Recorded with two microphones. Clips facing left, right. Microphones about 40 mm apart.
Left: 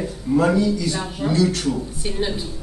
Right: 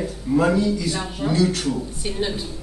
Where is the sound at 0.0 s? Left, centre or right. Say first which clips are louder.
Left 1 dB; centre.